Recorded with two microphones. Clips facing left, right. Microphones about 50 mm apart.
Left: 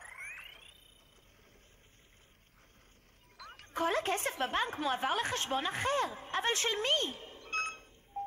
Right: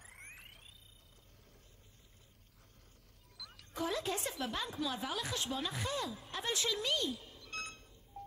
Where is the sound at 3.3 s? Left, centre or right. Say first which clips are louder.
Left 5 dB; left.